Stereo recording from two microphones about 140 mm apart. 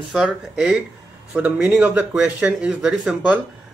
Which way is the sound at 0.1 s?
Centre (ahead or behind).